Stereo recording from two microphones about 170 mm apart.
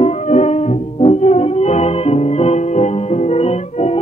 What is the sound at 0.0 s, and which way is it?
Music, 40° left (ahead or behind).